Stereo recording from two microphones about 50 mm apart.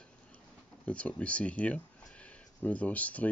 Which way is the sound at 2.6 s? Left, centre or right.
Left.